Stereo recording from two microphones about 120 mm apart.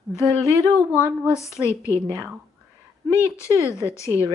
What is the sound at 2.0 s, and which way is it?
Speech, 25° right (ahead or behind).